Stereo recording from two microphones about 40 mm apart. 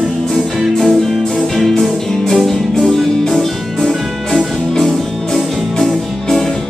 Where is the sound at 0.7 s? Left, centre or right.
Centre.